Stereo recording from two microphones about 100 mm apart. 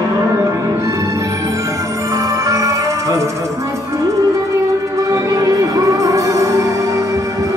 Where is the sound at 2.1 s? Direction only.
35° right (ahead or behind).